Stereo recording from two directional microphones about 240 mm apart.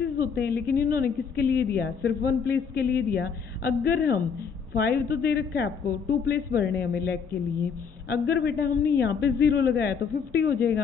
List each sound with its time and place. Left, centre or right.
0.0 s a woman's voice: left
8.1 s a man's voice: left